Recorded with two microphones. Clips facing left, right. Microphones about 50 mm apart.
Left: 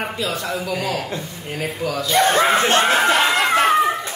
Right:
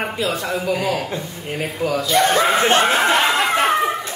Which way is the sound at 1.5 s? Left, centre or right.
Centre.